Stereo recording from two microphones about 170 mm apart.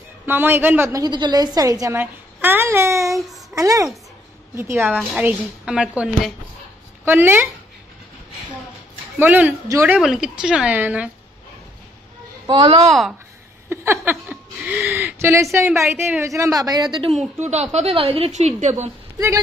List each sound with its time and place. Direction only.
0.3 s a woman's voice: 10° right (ahead or behind)
9.2 s a woman's voice: 10° right (ahead or behind)
9.9 s speech: centre (ahead or behind)
12.4 s a woman's voice: 25° right (ahead or behind)
13.7 s a woman's voice: 10° right (ahead or behind)
17.2 s a woman's voice: 40° right (ahead or behind)
19.1 s speech: 20° right (ahead or behind)